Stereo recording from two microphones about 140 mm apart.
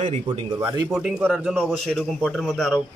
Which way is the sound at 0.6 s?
20° right (ahead or behind).